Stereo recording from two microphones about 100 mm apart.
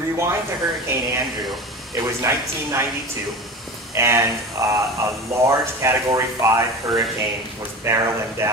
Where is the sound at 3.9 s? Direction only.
30° right (ahead or behind).